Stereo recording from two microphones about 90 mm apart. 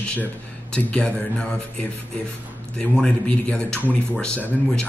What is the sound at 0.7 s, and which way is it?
Speech, 10° left (ahead or behind).